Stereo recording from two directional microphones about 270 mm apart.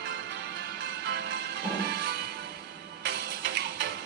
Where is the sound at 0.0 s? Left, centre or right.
Right.